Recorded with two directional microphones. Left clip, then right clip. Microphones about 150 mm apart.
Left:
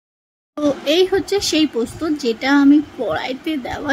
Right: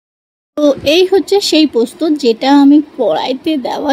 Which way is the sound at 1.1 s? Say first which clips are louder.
Right 7 dB; 20° right (ahead or behind).